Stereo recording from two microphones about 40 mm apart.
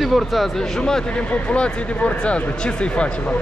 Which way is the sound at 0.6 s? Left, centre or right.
Centre.